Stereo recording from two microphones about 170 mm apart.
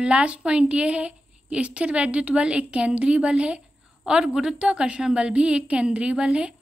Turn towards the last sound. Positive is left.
turn(degrees=-5)  # may be behind; listen again after turning